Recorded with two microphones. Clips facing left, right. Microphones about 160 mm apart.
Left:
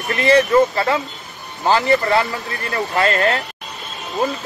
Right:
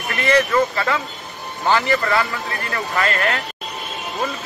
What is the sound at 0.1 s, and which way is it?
Speech, 30° left (ahead or behind).